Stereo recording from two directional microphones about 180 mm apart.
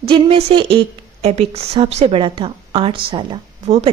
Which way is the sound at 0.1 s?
30° right (ahead or behind).